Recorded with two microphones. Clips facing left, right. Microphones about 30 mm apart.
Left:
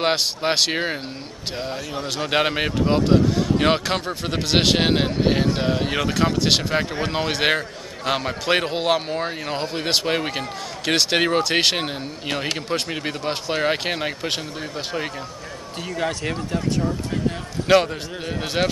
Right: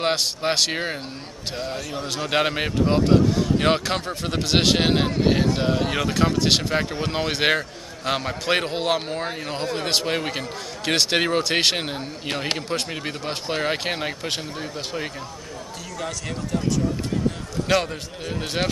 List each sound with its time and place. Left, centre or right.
0.0 s speech: centre
16.0 s speech: left
17.6 s speech: centre